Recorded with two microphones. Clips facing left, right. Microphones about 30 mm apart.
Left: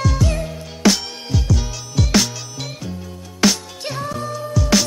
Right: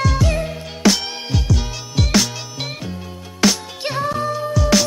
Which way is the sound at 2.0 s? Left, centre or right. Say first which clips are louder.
Even; centre.